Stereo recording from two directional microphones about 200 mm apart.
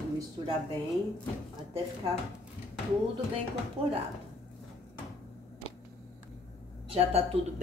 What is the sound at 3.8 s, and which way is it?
Speech, 30° right (ahead or behind).